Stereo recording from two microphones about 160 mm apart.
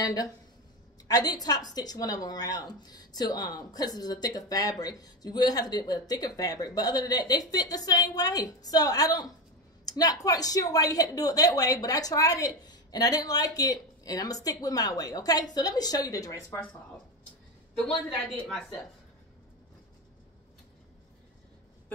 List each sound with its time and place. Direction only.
0.0 s a woman's voice: 25° left (ahead or behind)
9.8 s a sound: 25° left (ahead or behind)
10.2 s a woman's voice: 20° left (ahead or behind)
17.8 s a woman's voice: 5° left (ahead or behind)